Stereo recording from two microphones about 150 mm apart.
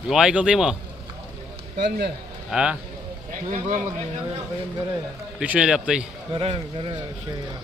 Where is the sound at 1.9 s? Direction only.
90° right.